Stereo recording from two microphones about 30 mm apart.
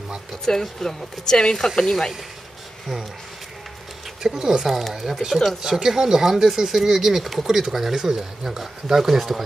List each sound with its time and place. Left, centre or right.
0.5 s speech: centre
4.4 s speech: centre
7.2 s speech: centre
7.5 s speech: centre